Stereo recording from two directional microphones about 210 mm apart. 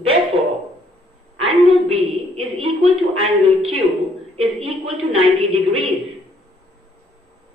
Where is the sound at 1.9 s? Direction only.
25° right (ahead or behind).